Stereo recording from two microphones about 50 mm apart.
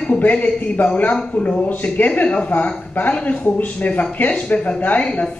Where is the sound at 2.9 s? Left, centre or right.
Left.